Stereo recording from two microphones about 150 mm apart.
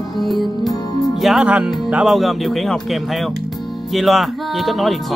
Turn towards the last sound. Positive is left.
turn(degrees=0)  # may be behind; listen again after turning